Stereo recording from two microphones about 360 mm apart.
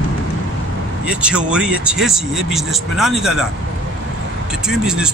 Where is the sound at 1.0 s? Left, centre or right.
Centre.